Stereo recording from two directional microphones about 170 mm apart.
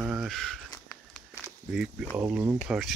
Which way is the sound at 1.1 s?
5° right (ahead or behind).